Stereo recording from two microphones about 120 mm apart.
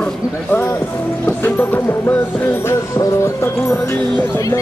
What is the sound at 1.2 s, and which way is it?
Music, 15° left (ahead or behind).